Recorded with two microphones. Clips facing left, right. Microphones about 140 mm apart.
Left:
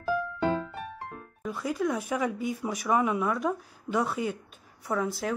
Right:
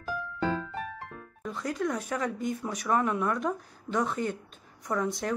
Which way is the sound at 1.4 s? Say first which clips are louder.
Left 2 dB; 5° left (ahead or behind).